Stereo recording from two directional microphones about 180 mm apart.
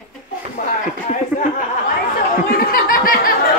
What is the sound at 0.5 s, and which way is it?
Speech, 45° left (ahead or behind).